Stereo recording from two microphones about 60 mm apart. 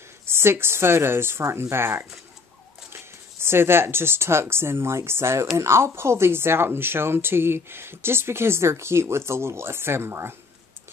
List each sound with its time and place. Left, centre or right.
0.3 s speech: right